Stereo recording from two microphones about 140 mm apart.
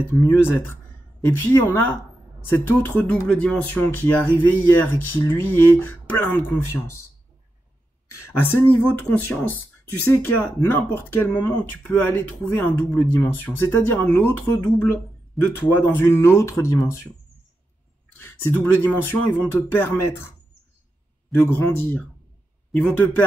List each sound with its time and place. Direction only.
0.3 s speech: 15° left (ahead or behind)
8.1 s speech: 20° left (ahead or behind)
18.1 s speech: 15° left (ahead or behind)
21.3 s speech: 15° left (ahead or behind)